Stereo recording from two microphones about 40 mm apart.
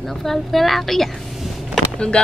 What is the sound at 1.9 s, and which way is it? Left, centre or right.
Speech, left.